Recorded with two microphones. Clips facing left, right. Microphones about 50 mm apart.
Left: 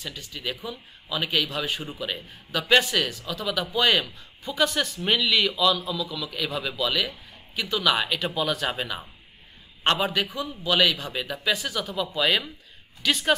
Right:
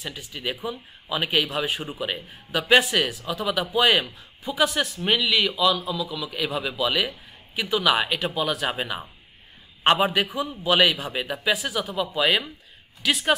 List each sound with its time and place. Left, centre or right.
0.0 s a man's voice: centre